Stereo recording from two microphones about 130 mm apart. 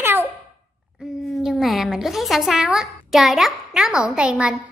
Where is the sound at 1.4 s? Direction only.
Centre (ahead or behind).